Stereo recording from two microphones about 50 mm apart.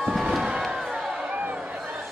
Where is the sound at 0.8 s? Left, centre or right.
Centre.